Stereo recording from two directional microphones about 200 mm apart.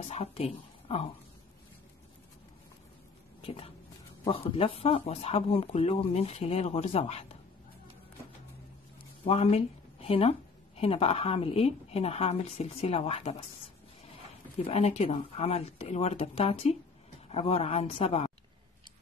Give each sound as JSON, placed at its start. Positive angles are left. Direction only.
{"t": 0.1, "sound": "speech", "side_deg": 30}
{"t": 3.4, "sound": "speech", "side_deg": 25}
{"t": 9.2, "sound": "speech", "side_deg": 30}
{"t": 14.6, "sound": "speech", "side_deg": 30}